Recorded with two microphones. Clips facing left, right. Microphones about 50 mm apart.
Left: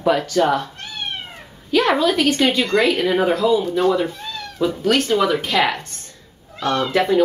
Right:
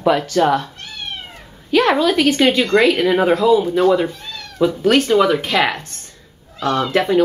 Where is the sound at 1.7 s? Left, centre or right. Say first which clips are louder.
Right 2 dB; centre.